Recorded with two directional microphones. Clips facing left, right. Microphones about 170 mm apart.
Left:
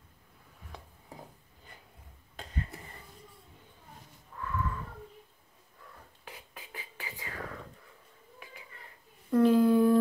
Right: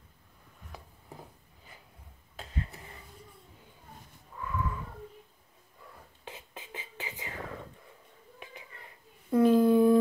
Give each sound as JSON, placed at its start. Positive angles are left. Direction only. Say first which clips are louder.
{"t": 2.4, "sound": "a sound", "louder": "even", "side_deg": -5}
{"t": 6.2, "sound": "whispering", "louder": "right 4 dB", "side_deg": -25}
{"t": 9.3, "sound": "humming", "louder": "right 1 dB", "side_deg": -10}